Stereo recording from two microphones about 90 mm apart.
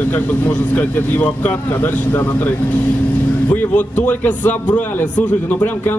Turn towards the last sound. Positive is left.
turn(degrees=20)  # may be behind; listen again after turning